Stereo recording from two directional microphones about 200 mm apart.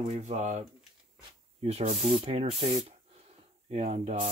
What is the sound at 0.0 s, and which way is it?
Sanding, 35° right (ahead or behind).